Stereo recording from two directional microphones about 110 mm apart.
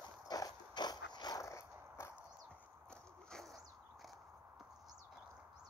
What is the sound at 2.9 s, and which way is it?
Biting, 5° left (ahead or behind).